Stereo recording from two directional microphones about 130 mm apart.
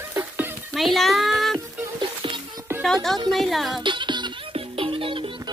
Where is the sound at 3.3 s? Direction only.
Centre (ahead or behind).